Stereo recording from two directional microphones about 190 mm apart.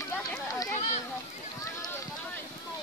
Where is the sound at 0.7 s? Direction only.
40° left (ahead or behind).